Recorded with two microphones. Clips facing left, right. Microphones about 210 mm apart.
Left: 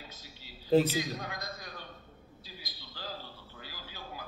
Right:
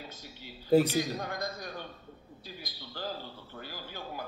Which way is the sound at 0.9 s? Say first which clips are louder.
Right 4 dB; 55° right (ahead or behind).